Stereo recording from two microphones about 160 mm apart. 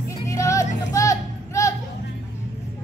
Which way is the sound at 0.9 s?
20° left (ahead or behind).